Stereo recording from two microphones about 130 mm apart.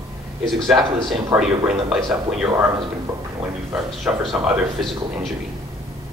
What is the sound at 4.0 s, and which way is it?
Speech, centre (ahead or behind).